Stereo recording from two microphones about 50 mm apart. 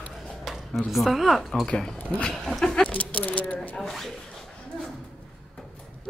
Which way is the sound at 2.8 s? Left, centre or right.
Left.